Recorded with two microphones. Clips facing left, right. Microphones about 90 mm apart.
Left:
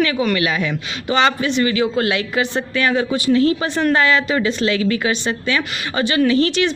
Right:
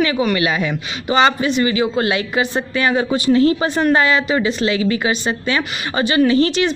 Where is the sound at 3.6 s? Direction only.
15° right (ahead or behind).